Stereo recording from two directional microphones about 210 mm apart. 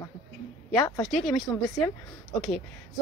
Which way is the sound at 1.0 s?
Centre (ahead or behind).